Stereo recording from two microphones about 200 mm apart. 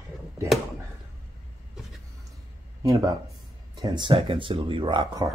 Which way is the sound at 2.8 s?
15° right (ahead or behind).